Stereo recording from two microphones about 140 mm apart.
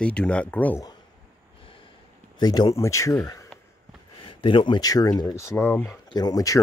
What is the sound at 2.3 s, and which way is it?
Speech, 30° left (ahead or behind).